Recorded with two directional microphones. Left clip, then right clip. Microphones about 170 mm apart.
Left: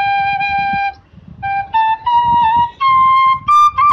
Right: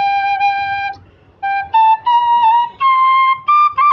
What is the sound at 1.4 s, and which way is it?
Flute, 10° right (ahead or behind).